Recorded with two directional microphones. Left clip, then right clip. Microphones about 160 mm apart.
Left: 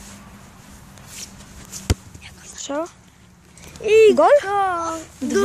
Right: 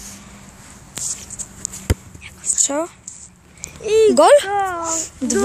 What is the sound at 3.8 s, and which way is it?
Speech, 50° left (ahead or behind).